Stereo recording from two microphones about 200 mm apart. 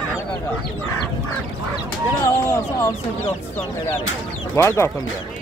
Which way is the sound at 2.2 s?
15° left (ahead or behind).